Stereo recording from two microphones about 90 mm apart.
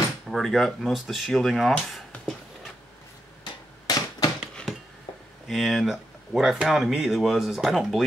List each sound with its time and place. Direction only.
0.3 s speech: centre (ahead or behind)
3.8 s typewriter: 45° left (ahead or behind)
5.5 s speech: centre (ahead or behind)